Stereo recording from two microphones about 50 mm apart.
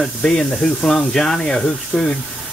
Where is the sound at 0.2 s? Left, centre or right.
Centre.